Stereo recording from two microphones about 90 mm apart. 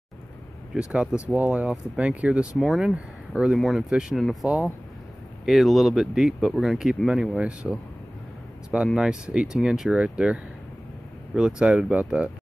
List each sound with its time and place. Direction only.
0.7 s speech: 15° right (ahead or behind)
2.5 s speech: centre (ahead or behind)